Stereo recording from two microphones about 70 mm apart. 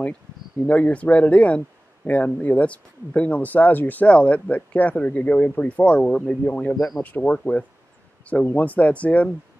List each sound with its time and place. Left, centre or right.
0.7 s speech: centre
6.7 s speech: centre
7.0 s speech: left